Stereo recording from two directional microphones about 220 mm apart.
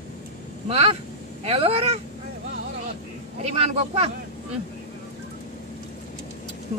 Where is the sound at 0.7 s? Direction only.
30° right (ahead or behind).